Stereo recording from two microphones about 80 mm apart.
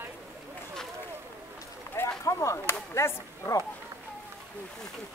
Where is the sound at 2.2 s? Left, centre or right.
Left.